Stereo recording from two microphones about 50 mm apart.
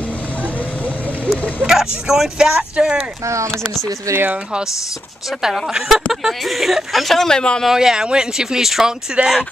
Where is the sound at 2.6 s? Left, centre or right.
Right.